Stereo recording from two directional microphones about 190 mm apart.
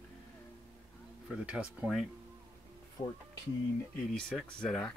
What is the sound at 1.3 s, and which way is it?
Speech, 5° right (ahead or behind).